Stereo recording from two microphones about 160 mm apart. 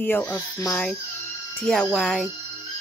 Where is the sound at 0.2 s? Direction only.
25° left (ahead or behind).